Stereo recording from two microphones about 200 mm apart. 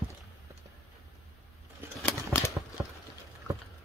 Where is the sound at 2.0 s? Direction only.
10° left (ahead or behind).